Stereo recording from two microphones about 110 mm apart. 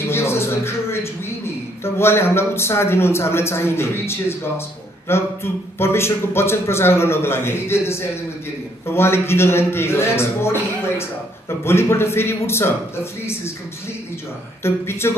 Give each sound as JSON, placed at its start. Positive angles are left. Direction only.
{"t": 0.0, "sound": "a sound", "side_deg": 25}
{"t": 2.0, "sound": "a man's voice", "side_deg": 25}
{"t": 14.6, "sound": "a man's voice", "side_deg": 20}